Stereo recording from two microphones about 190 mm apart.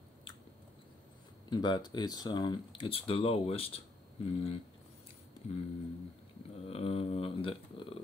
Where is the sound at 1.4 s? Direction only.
25° left (ahead or behind).